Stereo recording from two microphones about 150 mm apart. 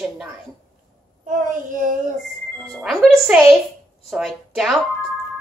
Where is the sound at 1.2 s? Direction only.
60° right (ahead or behind).